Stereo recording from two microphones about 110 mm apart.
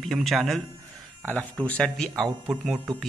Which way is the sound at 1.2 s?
15° left (ahead or behind).